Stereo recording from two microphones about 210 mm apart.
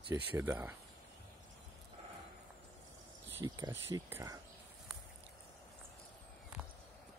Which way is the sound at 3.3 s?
15° right (ahead or behind).